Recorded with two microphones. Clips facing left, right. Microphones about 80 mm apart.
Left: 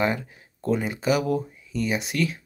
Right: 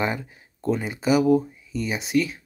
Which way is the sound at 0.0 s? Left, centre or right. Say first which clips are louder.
Left 1 dB; centre.